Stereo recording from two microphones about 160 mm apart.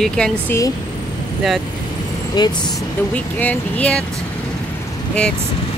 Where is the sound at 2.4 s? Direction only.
25° left (ahead or behind).